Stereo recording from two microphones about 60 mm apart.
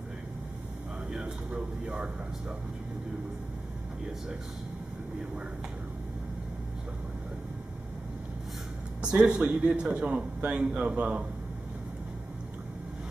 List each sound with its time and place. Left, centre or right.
9.0 s a man's voice: centre